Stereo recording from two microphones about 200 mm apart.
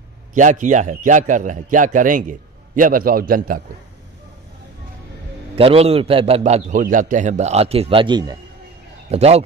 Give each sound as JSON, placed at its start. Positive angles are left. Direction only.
{"t": 0.3, "sound": "a man's voice", "side_deg": -40}
{"t": 5.6, "sound": "a man's voice", "side_deg": -30}
{"t": 9.1, "sound": "a man's voice", "side_deg": -30}